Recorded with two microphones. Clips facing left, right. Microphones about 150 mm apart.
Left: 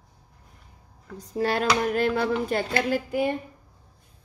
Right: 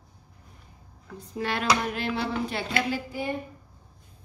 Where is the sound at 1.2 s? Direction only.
40° left (ahead or behind).